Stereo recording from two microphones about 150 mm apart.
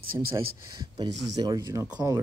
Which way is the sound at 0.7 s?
30° right (ahead or behind).